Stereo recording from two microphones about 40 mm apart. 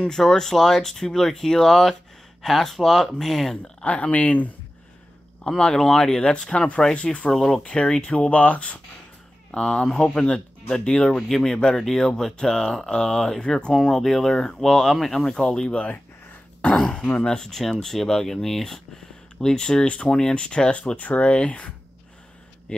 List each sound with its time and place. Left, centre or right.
0.1 s speech: centre
3.8 s speech: left
5.6 s speech: centre
6.3 s speech: left
8.3 s speech: left
9.6 s speech: centre
15.7 s speech: left
16.7 s speech: centre
17.5 s speech: centre; by 22.8 s left